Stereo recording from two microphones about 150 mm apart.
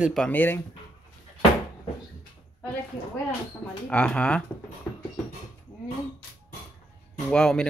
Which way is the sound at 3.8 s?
5° left (ahead or behind).